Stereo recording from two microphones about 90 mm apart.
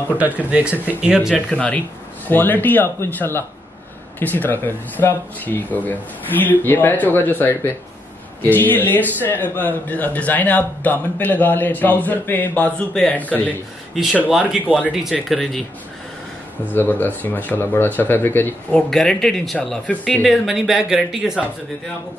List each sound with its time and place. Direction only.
0.1 s speech: 15° right (ahead or behind)
1.3 s a man's voice: 15° left (ahead or behind)
14.5 s speech: 10° right (ahead or behind)
15.2 s speech: centre (ahead or behind)
16.7 s a man's voice: 20° left (ahead or behind)
18.7 s speech: 5° left (ahead or behind)
19.9 s speech: 15° left (ahead or behind)
20.2 s speech: 5° right (ahead or behind)